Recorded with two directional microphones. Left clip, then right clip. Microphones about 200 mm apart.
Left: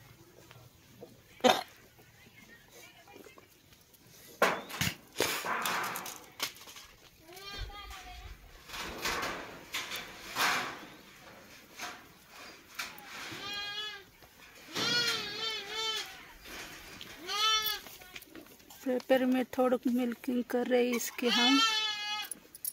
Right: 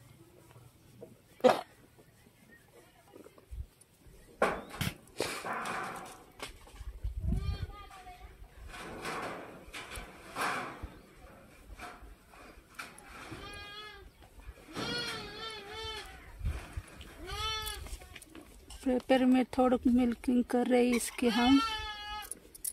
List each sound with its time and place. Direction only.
1.4 s cough: 45° right (ahead or behind)
4.4 s bouncing: 40° right (ahead or behind)
5.4 s dog: 40° right (ahead or behind)
8.6 s drawer open or close: 40° right (ahead or behind)
12.7 s goat: 45° right (ahead or behind)
14.7 s music: 55° right (ahead or behind)
17.0 s goat: 55° right (ahead or behind)
18.9 s speech: 35° right (ahead or behind)
21.2 s goat: 55° right (ahead or behind)